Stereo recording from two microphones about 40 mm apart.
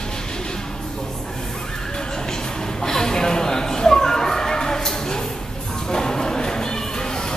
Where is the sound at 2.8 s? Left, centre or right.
Centre.